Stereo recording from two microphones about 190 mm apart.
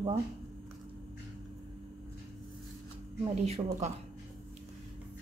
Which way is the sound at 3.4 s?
35° right (ahead or behind).